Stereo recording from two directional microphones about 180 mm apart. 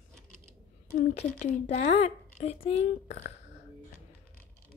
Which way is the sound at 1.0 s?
45° left (ahead or behind).